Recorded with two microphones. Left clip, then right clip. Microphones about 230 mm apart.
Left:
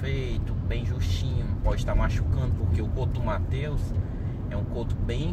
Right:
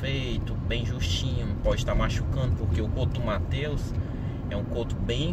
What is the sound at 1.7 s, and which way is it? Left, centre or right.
Speech, centre.